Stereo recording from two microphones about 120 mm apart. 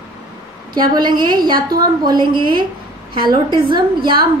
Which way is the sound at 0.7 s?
35° right (ahead or behind).